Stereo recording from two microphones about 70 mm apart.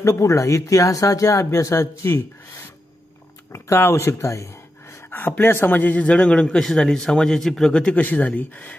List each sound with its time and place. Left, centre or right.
0.0 s speech: left
5.4 s speech: left; by 7.7 s centre
7.7 s speech: centre